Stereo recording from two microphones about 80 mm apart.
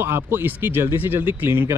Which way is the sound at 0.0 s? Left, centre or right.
Right.